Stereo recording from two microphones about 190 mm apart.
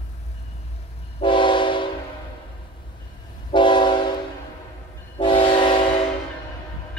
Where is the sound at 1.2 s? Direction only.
25° left (ahead or behind).